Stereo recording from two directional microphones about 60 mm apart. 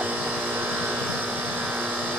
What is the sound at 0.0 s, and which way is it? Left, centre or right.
Vehicle, right.